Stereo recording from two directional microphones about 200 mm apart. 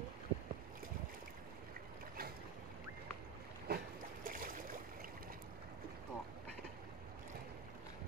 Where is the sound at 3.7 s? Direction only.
55° right (ahead or behind).